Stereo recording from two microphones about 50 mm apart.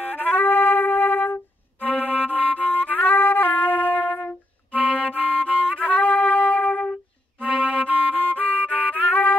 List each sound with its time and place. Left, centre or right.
0.0 s music: left
7.4 s music: right
7.9 s music: left